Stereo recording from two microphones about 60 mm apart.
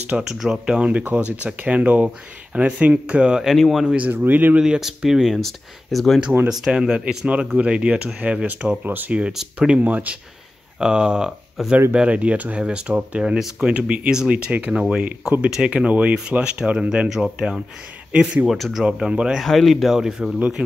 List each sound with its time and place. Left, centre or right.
0.3 s speech: centre
3.8 s speech: right
4.2 s speech: right
4.6 s speech: centre
5.4 s speech: centre
6.6 s speech: centre
8.8 s speech: right
9.3 s speech: centre
9.8 s speech: right
10.8 s speech: centre
18.5 s speech: centre
18.9 s speech: centre
19.4 s speech: centre
20.3 s speech: right